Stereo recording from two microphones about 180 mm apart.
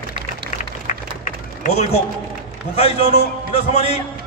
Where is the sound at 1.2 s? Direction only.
45° left (ahead or behind).